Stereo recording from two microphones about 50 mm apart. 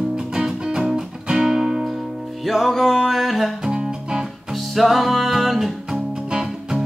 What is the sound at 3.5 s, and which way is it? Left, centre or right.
Music, centre.